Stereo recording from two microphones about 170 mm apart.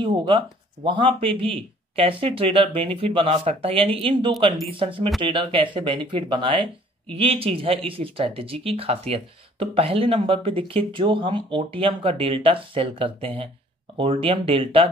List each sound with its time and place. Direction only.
0.0 s speech: 25° right (ahead or behind)